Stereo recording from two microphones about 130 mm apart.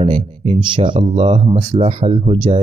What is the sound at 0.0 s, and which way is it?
Speech, 45° right (ahead or behind).